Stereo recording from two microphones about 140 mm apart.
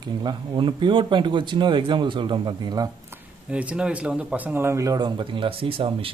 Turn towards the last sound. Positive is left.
turn(degrees=-40)  # may be behind; listen again after turning